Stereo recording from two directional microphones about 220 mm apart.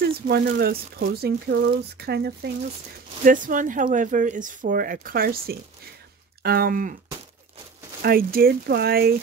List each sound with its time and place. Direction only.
0.0 s speech: 45° right (ahead or behind)
8.0 s speech: 40° right (ahead or behind)